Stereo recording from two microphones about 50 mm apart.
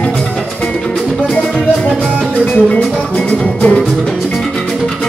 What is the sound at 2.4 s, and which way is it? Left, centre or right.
Music, left.